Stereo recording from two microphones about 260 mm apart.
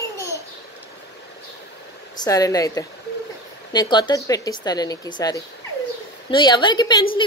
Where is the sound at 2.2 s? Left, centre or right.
Centre.